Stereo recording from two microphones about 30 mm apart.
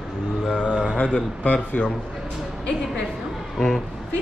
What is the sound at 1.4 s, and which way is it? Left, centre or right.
Speech, left.